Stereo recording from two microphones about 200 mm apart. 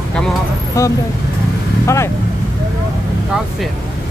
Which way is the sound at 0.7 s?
15° left (ahead or behind).